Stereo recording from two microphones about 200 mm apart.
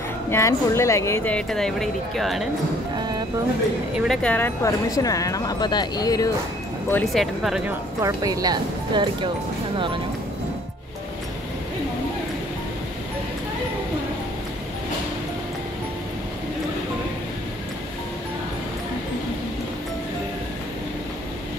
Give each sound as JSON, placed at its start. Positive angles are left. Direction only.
{"t": 0.3, "sound": "speech", "side_deg": 15}
{"t": 3.9, "sound": "speech", "side_deg": 0}
{"t": 6.9, "sound": "speech", "side_deg": 5}
{"t": 8.0, "sound": "speech", "side_deg": -15}